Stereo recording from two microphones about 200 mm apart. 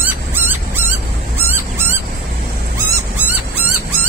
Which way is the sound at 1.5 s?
10° right (ahead or behind).